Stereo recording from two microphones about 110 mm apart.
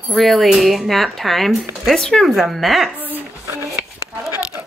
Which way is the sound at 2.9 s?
15° right (ahead or behind).